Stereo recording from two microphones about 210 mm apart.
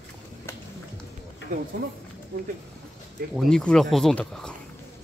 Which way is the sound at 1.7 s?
45° right (ahead or behind).